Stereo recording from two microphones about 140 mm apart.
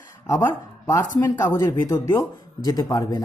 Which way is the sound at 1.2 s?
25° left (ahead or behind).